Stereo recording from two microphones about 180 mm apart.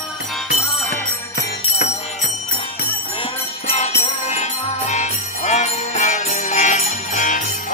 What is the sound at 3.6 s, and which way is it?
Jingle bell, 35° left (ahead or behind).